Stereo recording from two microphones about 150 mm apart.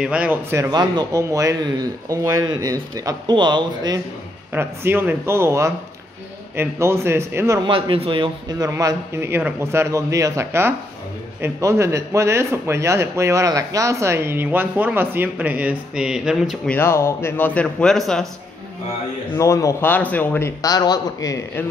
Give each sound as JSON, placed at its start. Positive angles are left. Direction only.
{"t": 0.0, "sound": "speech", "side_deg": -5}
{"t": 0.7, "sound": "speech", "side_deg": -25}
{"t": 4.5, "sound": "speech", "side_deg": -15}
{"t": 7.6, "sound": "speech", "side_deg": -35}
{"t": 16.7, "sound": "speech", "side_deg": 15}
{"t": 19.3, "sound": "a man's voice", "side_deg": 20}